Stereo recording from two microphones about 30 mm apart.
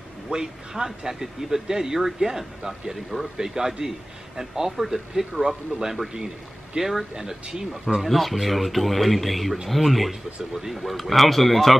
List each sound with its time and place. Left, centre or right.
0.3 s a man's voice: centre
6.8 s speech: centre
7.4 s speech: right
8.0 s speech: centre